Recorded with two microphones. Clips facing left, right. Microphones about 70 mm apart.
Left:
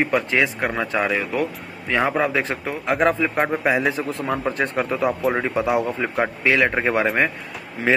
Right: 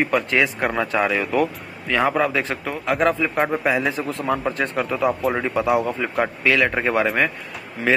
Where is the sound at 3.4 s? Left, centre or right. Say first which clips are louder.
Even; centre.